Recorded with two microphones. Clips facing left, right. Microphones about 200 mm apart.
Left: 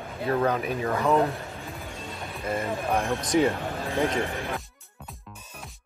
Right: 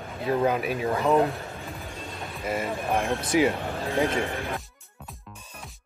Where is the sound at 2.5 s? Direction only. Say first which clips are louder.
Even; 5° right (ahead or behind).